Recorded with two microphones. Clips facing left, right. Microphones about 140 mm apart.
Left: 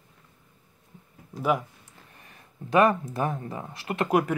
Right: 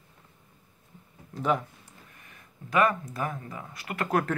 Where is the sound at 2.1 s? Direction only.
30° left (ahead or behind).